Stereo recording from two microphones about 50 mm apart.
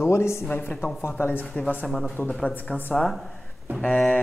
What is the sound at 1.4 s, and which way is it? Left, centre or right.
Speech, left.